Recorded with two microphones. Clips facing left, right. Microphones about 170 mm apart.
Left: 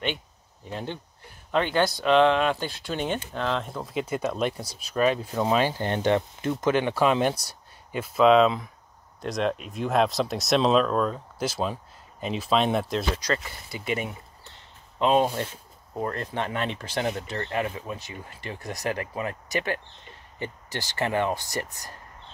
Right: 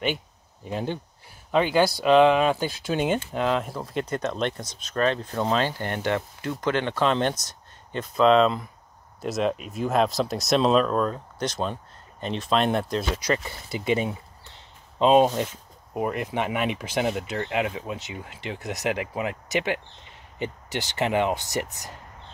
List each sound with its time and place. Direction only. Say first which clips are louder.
0.7 s speech: right 5 dB; 10° right (ahead or behind)
13.3 s speech: right 3 dB; 20° right (ahead or behind)